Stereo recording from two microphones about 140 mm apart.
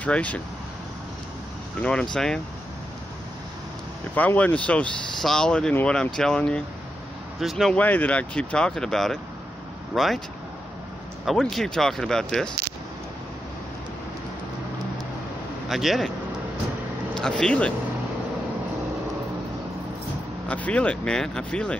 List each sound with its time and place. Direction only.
0.0 s speech: 10° left (ahead or behind)
1.8 s speech: 5° left (ahead or behind)
4.1 s speech: 10° left (ahead or behind)
11.2 s speech: centre (ahead or behind)
15.7 s speech: centre (ahead or behind)
17.1 s speech: 5° left (ahead or behind)
20.4 s speech: 10° left (ahead or behind)